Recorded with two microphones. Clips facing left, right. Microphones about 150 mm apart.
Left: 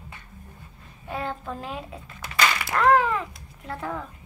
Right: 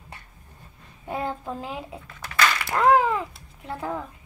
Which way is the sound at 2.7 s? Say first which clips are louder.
Right 1 dB; 20° right (ahead or behind).